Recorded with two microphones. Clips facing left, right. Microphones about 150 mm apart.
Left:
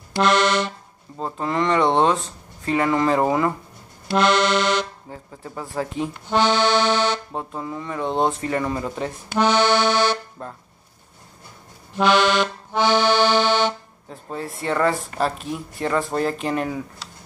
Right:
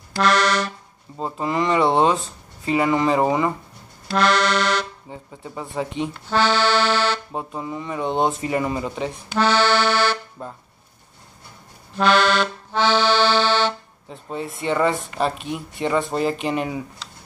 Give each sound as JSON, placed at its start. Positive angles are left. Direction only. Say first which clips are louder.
{"t": 0.2, "sound": "accordion", "louder": "left 1 dB", "side_deg": 25}
{"t": 1.1, "sound": "speech", "louder": "right 1 dB", "side_deg": -5}
{"t": 4.1, "sound": "accordion", "louder": "left 1 dB", "side_deg": 20}
{"t": 5.1, "sound": "speech", "louder": "right 3 dB", "side_deg": 0}
{"t": 6.2, "sound": "accordion", "louder": "left 1 dB", "side_deg": 20}
{"t": 7.3, "sound": "speech", "louder": "right 1 dB", "side_deg": -5}
{"t": 9.3, "sound": "accordion", "louder": "left 1 dB", "side_deg": 15}
{"t": 10.4, "sound": "speech", "louder": "right 1 dB", "side_deg": -5}
{"t": 12.0, "sound": "accordion", "louder": "even", "side_deg": 15}
{"t": 14.0, "sound": "speech", "louder": "right 1 dB", "side_deg": 0}